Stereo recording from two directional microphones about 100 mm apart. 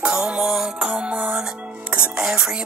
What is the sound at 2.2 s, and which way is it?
Music, 10° right (ahead or behind).